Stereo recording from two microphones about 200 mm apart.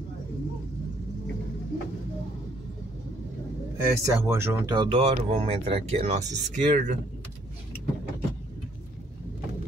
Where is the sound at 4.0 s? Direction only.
15° right (ahead or behind).